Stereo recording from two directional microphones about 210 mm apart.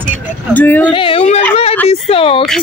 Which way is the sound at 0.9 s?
25° left (ahead or behind).